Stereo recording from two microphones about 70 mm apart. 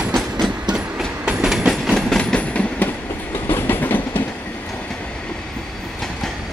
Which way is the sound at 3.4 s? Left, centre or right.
Left.